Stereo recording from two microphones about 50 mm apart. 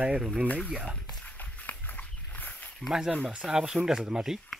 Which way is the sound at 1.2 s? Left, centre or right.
Left.